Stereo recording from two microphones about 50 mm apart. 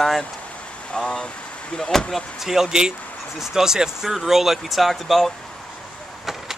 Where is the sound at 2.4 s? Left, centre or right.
Centre.